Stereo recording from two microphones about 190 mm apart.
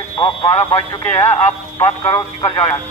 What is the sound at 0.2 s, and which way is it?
Speech, 25° left (ahead or behind).